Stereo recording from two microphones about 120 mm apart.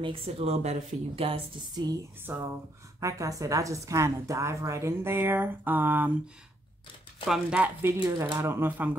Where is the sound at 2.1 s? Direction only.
15° right (ahead or behind).